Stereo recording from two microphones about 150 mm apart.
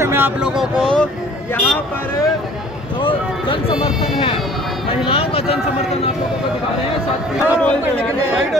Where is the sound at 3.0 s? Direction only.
35° left (ahead or behind).